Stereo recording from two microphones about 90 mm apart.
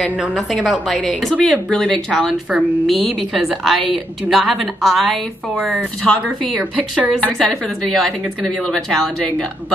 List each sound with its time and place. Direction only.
0.5 s a woman's voice: 5° right (ahead or behind)
6.8 s a woman's voice: 15° right (ahead or behind)
7.3 s a woman's voice: 5° left (ahead or behind)